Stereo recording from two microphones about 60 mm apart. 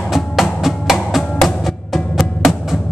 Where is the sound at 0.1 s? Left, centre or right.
Centre.